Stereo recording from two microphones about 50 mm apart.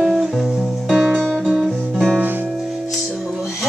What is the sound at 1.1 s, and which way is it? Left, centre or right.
Music, centre.